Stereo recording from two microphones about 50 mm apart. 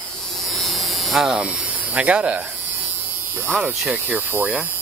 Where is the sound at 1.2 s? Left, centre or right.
Centre.